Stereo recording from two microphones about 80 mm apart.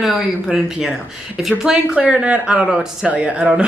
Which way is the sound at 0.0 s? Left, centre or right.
Centre.